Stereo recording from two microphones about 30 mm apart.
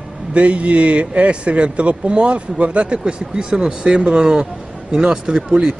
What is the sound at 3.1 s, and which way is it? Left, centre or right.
Speech, right.